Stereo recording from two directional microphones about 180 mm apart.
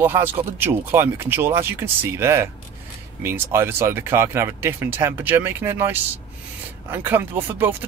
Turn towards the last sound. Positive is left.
turn(degrees=-10)  # may be behind; listen again after turning